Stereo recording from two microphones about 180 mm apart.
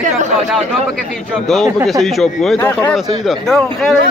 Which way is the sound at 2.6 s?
10° left (ahead or behind).